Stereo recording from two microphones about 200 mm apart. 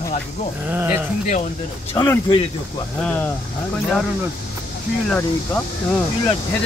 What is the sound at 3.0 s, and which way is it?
Speech, 5° left (ahead or behind).